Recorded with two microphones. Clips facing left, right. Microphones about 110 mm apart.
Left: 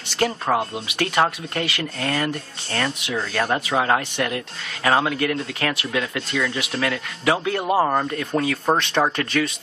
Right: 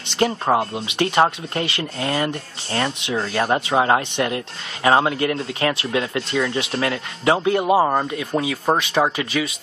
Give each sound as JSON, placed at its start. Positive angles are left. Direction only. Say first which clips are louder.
{"t": 0.1, "sound": "speech", "louder": "right 3 dB", "side_deg": -20}